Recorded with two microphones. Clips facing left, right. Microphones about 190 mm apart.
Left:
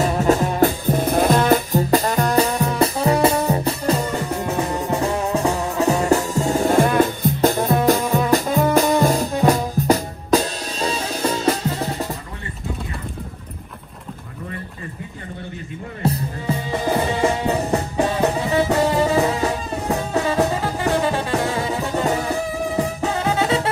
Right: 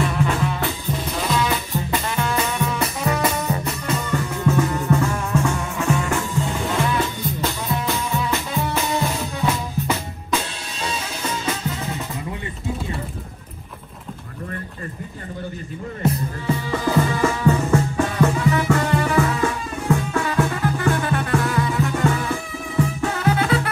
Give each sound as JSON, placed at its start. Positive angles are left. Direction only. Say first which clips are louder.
{"t": 0.0, "sound": "music", "louder": "left 4 dB", "side_deg": 40}
{"t": 1.8, "sound": "music", "louder": "left 6 dB", "side_deg": 40}
{"t": 16.8, "sound": "music", "louder": "even", "side_deg": 20}
{"t": 17.3, "sound": "music", "louder": "right 1 dB", "side_deg": 35}